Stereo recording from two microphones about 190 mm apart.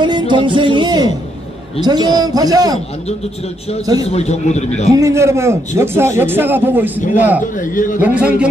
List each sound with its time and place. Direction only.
0.0 s a man's voice: 25° right (ahead or behind)
3.8 s a man's voice: 20° right (ahead or behind)
4.1 s a man's voice: 35° left (ahead or behind)
4.9 s speech: 15° right (ahead or behind)
7.7 s a man's voice: 45° left (ahead or behind)
8.0 s speech: 5° right (ahead or behind)